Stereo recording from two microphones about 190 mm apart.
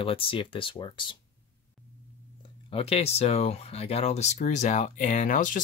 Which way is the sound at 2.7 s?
30° left (ahead or behind).